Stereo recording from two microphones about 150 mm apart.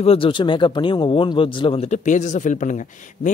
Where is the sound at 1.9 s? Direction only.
55° left (ahead or behind).